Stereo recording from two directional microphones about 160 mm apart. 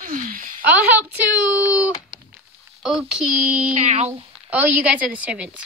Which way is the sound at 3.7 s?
45° right (ahead or behind).